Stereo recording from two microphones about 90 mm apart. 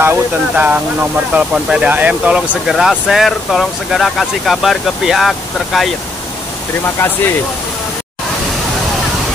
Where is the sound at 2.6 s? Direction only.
Centre (ahead or behind).